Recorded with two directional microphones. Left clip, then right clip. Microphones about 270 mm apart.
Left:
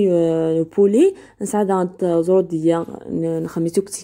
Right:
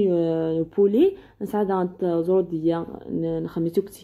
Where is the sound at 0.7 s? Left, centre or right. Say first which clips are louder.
Left 4 dB; left.